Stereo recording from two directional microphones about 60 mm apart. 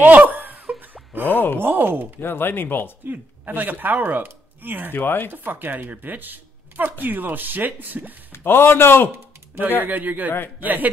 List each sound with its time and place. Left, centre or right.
0.0 s a sound: right
1.3 s a man's voice: left
1.6 s speech: right
2.1 s a man's voice: left
3.1 s speech: right
4.9 s a man's voice: left
5.3 s speech: right
8.3 s a man's voice: left
9.8 s speech: right